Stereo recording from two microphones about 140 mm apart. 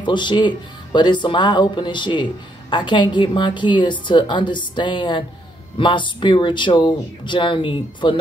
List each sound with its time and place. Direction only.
0.0 s a woman's voice: 35° left (ahead or behind)